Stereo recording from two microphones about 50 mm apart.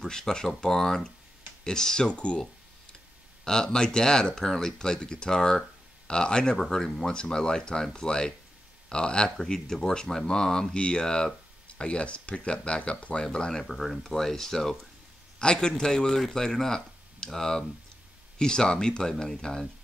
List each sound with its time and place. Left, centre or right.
0.0 s speech: centre
3.4 s speech: centre